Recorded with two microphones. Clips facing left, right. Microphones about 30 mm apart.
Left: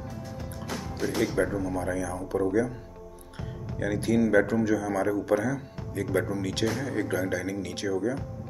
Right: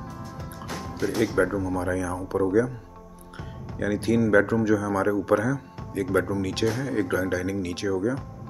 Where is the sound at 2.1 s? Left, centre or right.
Right.